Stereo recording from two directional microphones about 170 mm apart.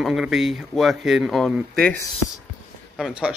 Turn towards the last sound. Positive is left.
turn(degrees=-5)  # may be behind; listen again after turning